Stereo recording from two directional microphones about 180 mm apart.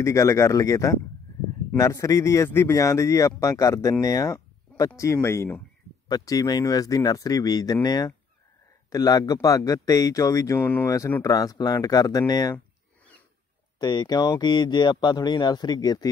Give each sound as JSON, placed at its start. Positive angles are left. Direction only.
{"t": 0.0, "sound": "speech", "side_deg": 15}
{"t": 12.5, "sound": "a sound", "side_deg": 10}
{"t": 13.7, "sound": "speech", "side_deg": 25}